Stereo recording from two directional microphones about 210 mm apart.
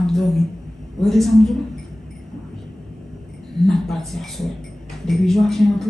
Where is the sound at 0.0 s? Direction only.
Centre (ahead or behind).